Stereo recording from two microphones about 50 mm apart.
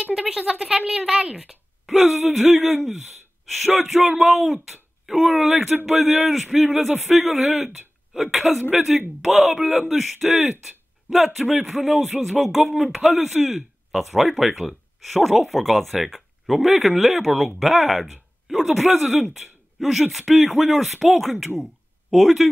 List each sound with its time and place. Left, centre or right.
0.0 s speech: centre
1.2 s a woman's voice: centre
1.9 s speech: centre